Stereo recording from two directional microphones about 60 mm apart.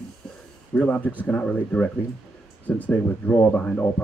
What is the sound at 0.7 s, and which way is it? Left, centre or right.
Speech, left.